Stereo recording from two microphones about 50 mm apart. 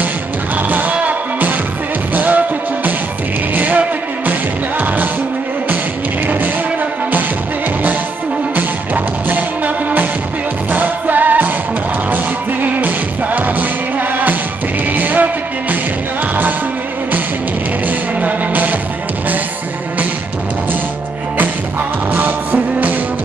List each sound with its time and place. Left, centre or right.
0.6 s music: right
8.5 s music: right
10.7 s music: right
12.6 s music: right
17.8 s music: right
22.1 s music: right